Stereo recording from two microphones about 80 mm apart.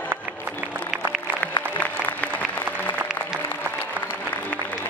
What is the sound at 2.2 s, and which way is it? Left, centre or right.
Applause, left.